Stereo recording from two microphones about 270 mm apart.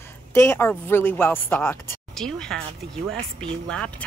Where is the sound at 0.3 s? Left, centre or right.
Centre.